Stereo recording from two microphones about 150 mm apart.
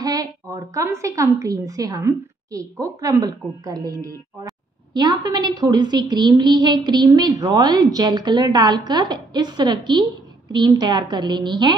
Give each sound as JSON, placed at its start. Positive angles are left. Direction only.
{"t": 0.0, "sound": "a woman's voice", "side_deg": -25}